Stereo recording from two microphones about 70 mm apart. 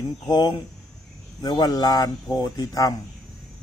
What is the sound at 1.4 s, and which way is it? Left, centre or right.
Speech, left.